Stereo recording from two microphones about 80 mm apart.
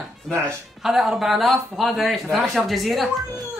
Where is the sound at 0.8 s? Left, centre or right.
Centre.